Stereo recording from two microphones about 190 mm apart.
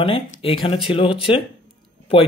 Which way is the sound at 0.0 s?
30° left (ahead or behind).